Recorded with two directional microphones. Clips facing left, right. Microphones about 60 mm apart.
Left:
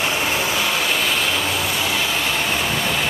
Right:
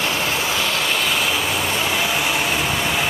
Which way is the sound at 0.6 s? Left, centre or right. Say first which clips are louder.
Even; centre.